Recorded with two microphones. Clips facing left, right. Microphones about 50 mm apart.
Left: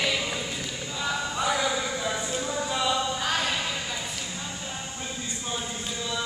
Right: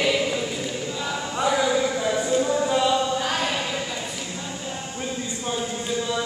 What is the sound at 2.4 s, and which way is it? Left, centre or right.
Singing, centre.